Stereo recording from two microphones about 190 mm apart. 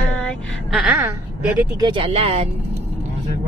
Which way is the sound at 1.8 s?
25° right (ahead or behind).